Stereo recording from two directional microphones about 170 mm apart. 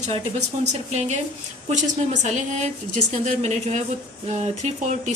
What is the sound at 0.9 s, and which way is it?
Speech, 40° right (ahead or behind).